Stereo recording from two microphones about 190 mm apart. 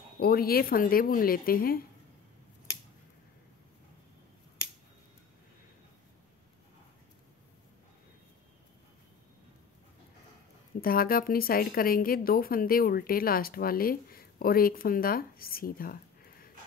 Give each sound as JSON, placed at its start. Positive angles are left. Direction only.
{"t": 0.2, "sound": "a woman's voice", "side_deg": 55}
{"t": 10.8, "sound": "a woman's voice", "side_deg": 50}